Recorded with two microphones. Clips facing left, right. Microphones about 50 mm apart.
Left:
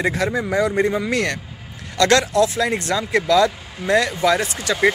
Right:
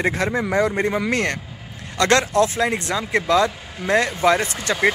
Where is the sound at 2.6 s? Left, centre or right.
Centre.